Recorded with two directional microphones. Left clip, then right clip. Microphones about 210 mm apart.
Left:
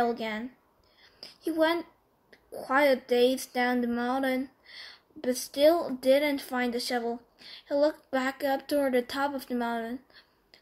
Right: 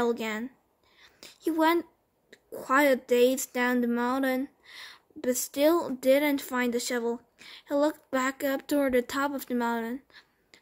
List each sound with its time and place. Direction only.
0.0 s a child's voice: 45° right (ahead or behind)